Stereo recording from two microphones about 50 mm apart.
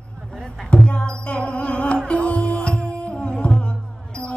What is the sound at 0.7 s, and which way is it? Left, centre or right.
Music, left.